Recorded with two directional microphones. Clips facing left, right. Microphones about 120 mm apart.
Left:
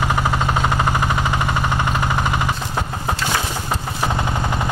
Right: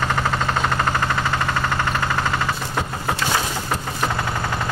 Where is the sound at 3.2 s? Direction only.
15° left (ahead or behind).